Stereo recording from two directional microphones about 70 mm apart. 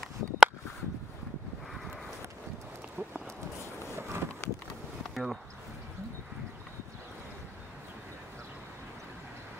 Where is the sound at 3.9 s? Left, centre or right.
Right.